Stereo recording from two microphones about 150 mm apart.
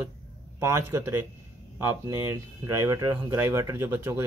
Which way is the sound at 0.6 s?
20° right (ahead or behind).